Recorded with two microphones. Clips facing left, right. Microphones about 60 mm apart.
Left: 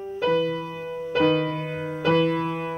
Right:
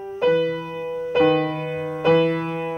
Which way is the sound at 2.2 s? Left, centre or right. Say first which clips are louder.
Right 2 dB; centre.